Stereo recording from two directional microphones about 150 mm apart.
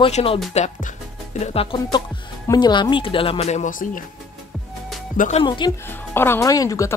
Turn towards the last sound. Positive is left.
turn(degrees=20)  # may be behind; listen again after turning